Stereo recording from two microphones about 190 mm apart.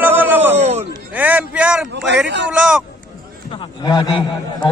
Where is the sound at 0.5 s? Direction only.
35° right (ahead or behind).